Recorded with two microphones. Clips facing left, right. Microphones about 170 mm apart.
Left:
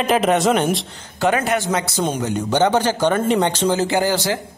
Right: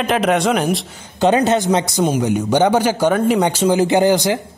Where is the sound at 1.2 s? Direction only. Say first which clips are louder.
Right 4 dB; 20° right (ahead or behind).